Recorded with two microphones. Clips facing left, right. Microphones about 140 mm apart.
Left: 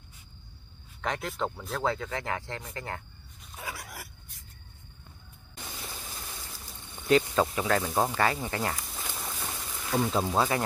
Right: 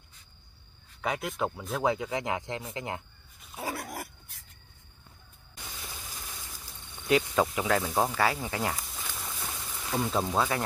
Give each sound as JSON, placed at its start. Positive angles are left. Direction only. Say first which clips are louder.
{"t": 1.0, "sound": "speech", "louder": "right 1 dB", "side_deg": -5}
{"t": 1.8, "sound": "speech", "louder": "right 2 dB", "side_deg": -15}
{"t": 3.7, "sound": "dog", "louder": "right 7 dB", "side_deg": -45}
{"t": 5.9, "sound": "rain", "louder": "left 2 dB", "side_deg": 10}
{"t": 7.1, "sound": "speech", "louder": "left 2 dB", "side_deg": -5}
{"t": 8.9, "sound": "a sound", "louder": "left 2 dB", "side_deg": 10}